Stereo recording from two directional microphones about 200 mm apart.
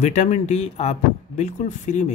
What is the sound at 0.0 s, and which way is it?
Speech, 35° left (ahead or behind).